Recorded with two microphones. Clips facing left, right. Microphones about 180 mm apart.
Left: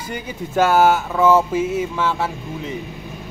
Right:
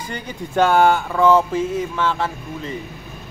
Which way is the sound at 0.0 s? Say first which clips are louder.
Left 1 dB; 10° left (ahead or behind).